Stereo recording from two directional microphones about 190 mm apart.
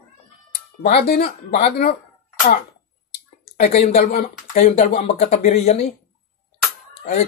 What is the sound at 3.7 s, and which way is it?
Speech, 40° left (ahead or behind).